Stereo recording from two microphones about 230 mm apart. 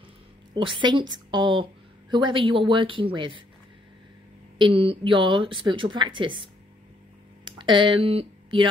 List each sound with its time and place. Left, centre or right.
0.6 s a woman's voice: right
4.6 s a woman's voice: right